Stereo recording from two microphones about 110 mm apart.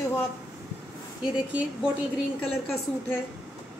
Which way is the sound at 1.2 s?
10° right (ahead or behind).